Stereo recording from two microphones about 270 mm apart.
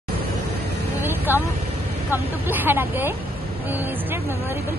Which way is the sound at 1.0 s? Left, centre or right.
Centre.